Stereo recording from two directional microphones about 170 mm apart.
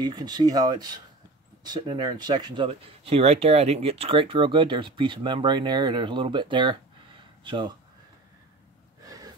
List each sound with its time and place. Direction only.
0.0 s speech: 25° right (ahead or behind)
9.0 s gasp: 20° right (ahead or behind)